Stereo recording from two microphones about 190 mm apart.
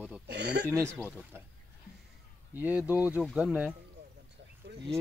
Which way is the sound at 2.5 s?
10° right (ahead or behind).